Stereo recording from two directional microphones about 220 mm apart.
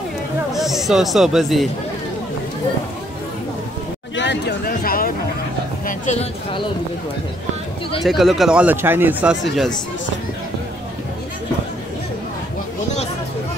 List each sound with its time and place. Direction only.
0.5 s speech: centre (ahead or behind)
4.1 s speech: 55° left (ahead or behind); by 6.2 s 35° left (ahead or behind)
8.0 s speech: centre (ahead or behind)